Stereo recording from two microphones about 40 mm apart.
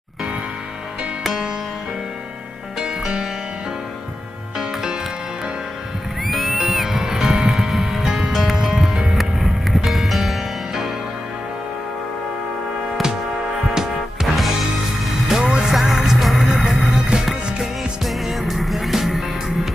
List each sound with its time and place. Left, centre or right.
6.2 s music: centre
8.3 s music: centre
9.1 s music: centre
13.7 s music: centre
16.9 s music: centre
18.0 s music: centre